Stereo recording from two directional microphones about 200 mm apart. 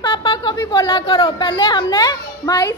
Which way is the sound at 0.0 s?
25° left (ahead or behind).